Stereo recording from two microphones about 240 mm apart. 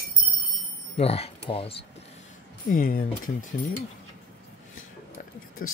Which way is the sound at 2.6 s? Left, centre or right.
Left.